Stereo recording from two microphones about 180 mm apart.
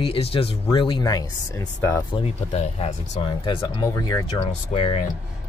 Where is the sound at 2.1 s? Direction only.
35° left (ahead or behind); by 4.2 s 20° left (ahead or behind).